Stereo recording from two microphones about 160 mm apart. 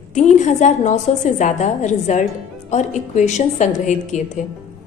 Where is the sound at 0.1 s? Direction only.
50° left (ahead or behind).